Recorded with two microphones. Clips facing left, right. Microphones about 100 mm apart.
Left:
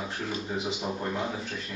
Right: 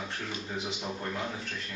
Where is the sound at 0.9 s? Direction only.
20° left (ahead or behind).